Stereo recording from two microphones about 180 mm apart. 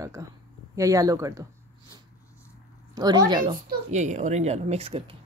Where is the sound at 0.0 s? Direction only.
20° right (ahead or behind).